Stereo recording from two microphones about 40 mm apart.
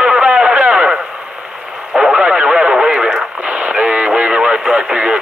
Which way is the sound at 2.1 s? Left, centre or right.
Right.